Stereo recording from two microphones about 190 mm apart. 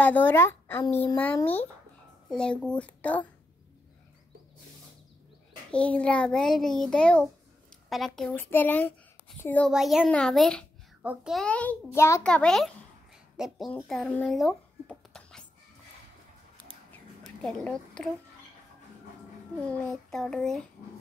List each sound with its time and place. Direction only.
0.0 s a child's voice: 10° left (ahead or behind)
5.7 s a child's voice: 5° left (ahead or behind)
8.4 s speech: 10° left (ahead or behind)
9.7 s a child's voice: 5° right (ahead or behind)
17.6 s a woman's voice: 5° left (ahead or behind)
19.7 s a child's voice: centre (ahead or behind)